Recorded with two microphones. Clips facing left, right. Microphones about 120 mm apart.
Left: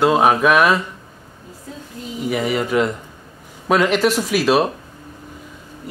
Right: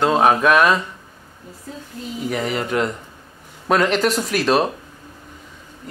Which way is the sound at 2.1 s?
5° left (ahead or behind).